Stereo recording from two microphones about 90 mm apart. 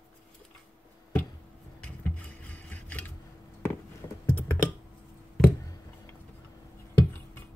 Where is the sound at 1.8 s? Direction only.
15° left (ahead or behind).